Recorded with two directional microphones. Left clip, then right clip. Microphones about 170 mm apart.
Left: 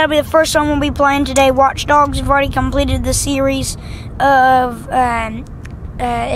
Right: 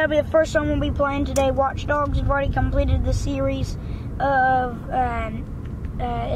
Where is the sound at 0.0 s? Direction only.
25° left (ahead or behind).